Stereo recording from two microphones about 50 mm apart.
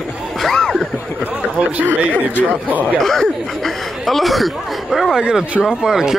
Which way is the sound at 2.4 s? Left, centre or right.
Right.